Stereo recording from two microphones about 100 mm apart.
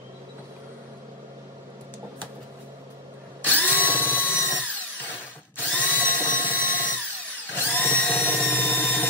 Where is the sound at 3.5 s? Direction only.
15° left (ahead or behind).